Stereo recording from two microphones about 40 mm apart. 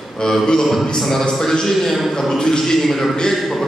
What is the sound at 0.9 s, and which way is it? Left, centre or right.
A man's voice, centre.